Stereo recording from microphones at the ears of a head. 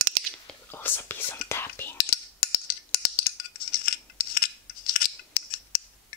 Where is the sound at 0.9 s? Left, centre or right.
Left.